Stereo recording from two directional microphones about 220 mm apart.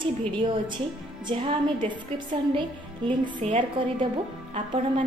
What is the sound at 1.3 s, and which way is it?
A woman's voice, 20° right (ahead or behind).